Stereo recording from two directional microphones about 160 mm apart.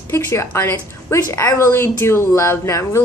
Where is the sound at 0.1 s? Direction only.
15° left (ahead or behind).